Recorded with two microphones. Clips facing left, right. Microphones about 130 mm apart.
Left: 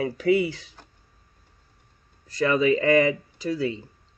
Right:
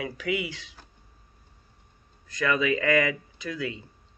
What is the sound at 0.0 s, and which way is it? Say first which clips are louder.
Speech: left 8 dB; 35° left (ahead or behind).